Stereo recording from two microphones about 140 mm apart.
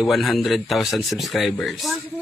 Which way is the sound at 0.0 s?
Centre (ahead or behind).